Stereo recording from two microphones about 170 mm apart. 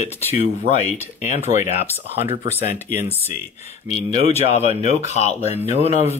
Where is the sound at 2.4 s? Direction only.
15° right (ahead or behind).